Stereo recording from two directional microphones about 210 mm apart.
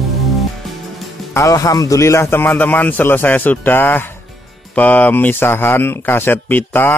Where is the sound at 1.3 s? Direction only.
15° left (ahead or behind).